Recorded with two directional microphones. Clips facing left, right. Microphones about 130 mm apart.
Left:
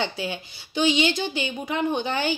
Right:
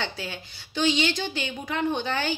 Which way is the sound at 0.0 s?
15° left (ahead or behind).